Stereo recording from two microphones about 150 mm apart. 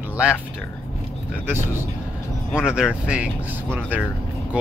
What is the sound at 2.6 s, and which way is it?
Speech, 5° right (ahead or behind).